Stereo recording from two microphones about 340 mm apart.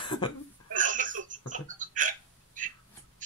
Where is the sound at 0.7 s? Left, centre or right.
Right.